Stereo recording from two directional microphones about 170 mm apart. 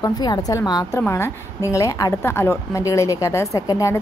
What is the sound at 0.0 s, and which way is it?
A woman's voice, 25° left (ahead or behind).